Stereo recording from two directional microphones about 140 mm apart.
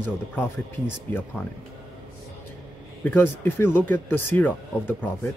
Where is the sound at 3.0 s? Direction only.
15° left (ahead or behind).